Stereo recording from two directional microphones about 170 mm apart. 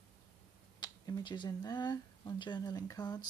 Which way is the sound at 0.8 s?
25° left (ahead or behind).